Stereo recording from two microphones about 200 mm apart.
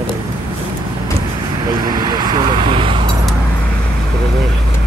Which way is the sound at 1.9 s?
20° right (ahead or behind).